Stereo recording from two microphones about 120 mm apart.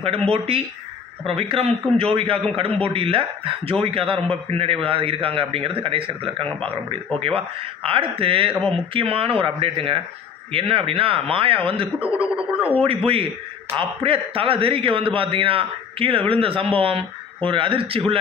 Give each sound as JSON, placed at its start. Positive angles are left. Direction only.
{"t": 1.2, "sound": "a man's voice", "side_deg": -55}
{"t": 12.0, "sound": "speech", "side_deg": -10}
{"t": 12.7, "sound": "a man's voice", "side_deg": -50}